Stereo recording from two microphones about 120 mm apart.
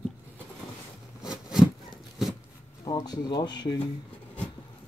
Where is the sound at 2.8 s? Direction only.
35° left (ahead or behind).